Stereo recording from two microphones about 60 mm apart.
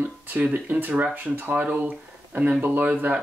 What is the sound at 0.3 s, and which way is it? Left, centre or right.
Speech, right.